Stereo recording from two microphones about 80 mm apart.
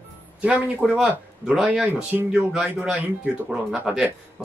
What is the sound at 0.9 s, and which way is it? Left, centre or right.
Speech, centre.